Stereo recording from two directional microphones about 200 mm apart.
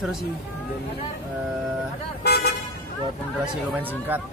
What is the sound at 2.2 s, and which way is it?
Speech, 50° left (ahead or behind).